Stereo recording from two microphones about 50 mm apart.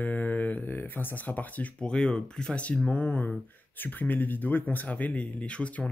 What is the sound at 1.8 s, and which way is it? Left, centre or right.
Speech, centre.